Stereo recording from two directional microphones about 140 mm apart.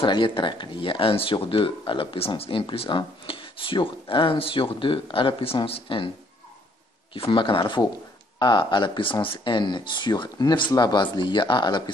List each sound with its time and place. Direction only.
0.0 s speech: 35° left (ahead or behind)
7.2 s speech: 40° left (ahead or behind)